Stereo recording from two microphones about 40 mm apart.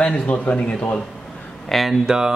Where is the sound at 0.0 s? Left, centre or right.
Left.